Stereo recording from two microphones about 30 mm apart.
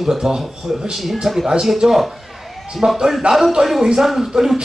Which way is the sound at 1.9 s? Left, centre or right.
Centre.